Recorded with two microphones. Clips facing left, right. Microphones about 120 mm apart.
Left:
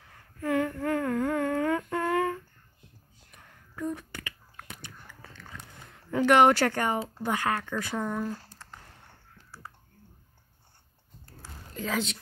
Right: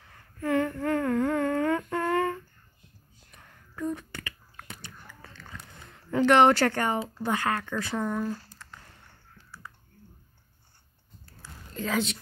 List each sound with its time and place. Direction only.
0.0 s humming: 10° left (ahead or behind)
3.3 s whispering: 10° left (ahead or behind)
6.0 s speech: 10° left (ahead or behind)
8.0 s speech: centre (ahead or behind)
8.6 s a sound: 35° left (ahead or behind)
11.7 s speech: 5° left (ahead or behind)